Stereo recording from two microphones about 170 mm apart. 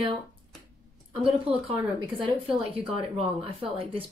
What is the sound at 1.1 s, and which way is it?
A woman's voice, 35° right (ahead or behind).